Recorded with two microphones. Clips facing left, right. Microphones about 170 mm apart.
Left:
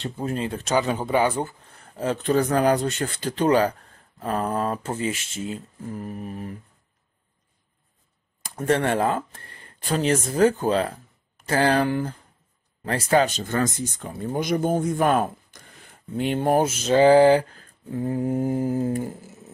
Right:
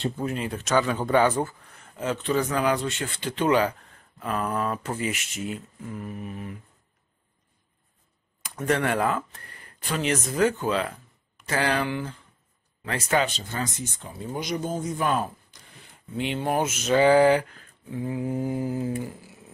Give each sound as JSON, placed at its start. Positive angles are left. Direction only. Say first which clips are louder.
{"t": 0.2, "sound": "speech", "louder": "left 2 dB", "side_deg": 25}
{"t": 0.7, "sound": "speech", "louder": "even", "side_deg": 15}
{"t": 1.8, "sound": "speech", "louder": "left 3 dB", "side_deg": 35}
{"t": 5.8, "sound": "speech", "louder": "left 2 dB", "side_deg": 40}
{"t": 8.4, "sound": "speech", "louder": "left 3 dB", "side_deg": 30}
{"t": 13.4, "sound": "speech", "louder": "left 7 dB", "side_deg": 50}
{"t": 16.6, "sound": "speech", "louder": "left 1 dB", "side_deg": 30}
{"t": 17.8, "sound": "speech", "louder": "left 4 dB", "side_deg": 45}